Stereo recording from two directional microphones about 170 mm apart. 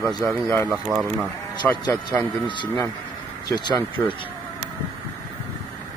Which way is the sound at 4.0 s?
10° left (ahead or behind).